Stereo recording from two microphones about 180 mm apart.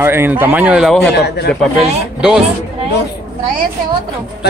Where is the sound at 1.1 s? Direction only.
65° left (ahead or behind).